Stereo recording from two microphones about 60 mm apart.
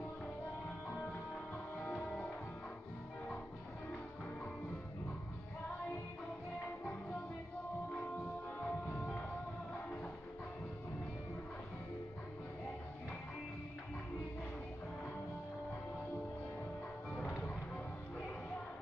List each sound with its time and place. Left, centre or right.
1.8 s music: centre
8.2 s music: centre